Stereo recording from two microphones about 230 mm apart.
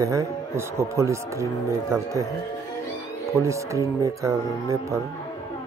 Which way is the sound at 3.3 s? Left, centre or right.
Centre.